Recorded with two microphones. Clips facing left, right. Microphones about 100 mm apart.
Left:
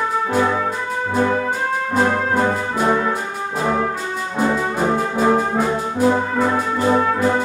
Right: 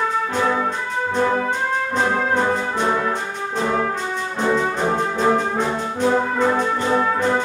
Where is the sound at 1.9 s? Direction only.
5° left (ahead or behind).